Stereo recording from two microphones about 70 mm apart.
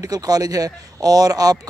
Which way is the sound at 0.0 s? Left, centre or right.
Right.